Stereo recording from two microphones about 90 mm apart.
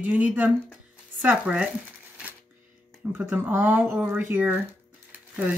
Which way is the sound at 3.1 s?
20° right (ahead or behind).